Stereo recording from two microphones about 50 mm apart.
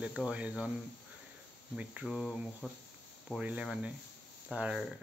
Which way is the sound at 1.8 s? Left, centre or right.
Right.